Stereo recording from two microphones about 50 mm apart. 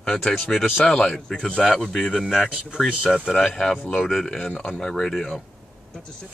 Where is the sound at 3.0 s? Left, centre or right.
Centre.